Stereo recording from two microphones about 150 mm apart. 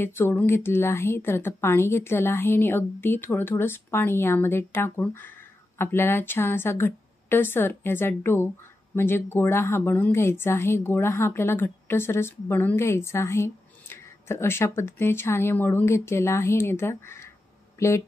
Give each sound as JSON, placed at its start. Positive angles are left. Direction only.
{"t": 0.0, "sound": "a woman's voice", "side_deg": 15}